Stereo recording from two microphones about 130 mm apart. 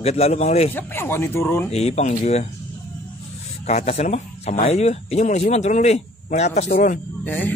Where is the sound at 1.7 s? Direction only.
55° left (ahead or behind).